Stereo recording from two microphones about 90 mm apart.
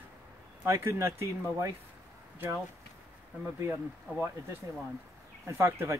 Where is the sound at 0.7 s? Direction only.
30° right (ahead or behind).